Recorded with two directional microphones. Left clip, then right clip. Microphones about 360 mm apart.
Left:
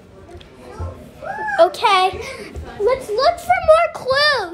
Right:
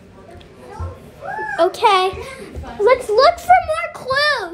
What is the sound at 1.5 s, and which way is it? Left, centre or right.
Speech, centre.